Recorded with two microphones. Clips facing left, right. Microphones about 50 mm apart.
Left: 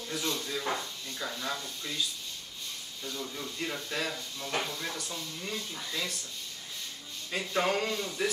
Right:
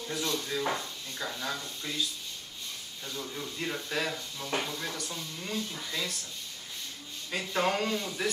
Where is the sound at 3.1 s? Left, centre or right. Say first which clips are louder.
Right 1 dB; centre.